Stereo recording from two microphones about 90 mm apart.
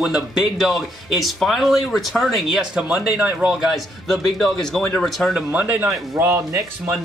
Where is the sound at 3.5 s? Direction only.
Centre (ahead or behind).